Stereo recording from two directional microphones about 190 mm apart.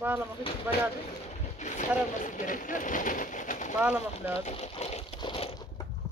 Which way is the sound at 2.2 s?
45° left (ahead or behind).